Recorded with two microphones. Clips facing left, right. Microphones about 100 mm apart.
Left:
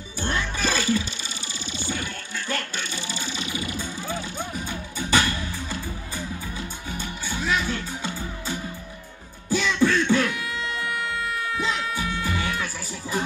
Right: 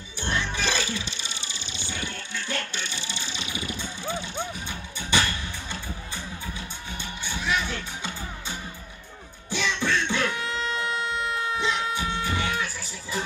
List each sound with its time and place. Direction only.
0.2 s music: 40° left (ahead or behind)
3.2 s music: 40° left (ahead or behind)
7.2 s music: 40° left (ahead or behind)
9.5 s beatboxing: 40° left (ahead or behind)
10.2 s music: 30° right (ahead or behind)